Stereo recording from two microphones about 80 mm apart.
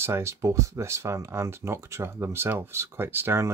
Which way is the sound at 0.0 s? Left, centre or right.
Right.